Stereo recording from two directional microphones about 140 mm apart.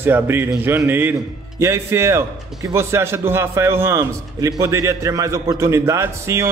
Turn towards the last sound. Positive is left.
turn(degrees=-20)  # may be behind; listen again after turning